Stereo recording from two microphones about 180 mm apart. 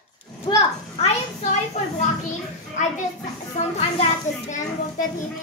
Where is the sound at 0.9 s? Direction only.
35° left (ahead or behind).